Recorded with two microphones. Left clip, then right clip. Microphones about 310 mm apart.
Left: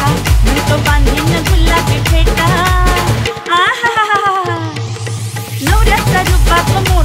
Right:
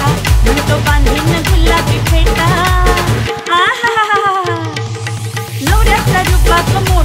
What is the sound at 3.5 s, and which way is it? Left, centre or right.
Music, right.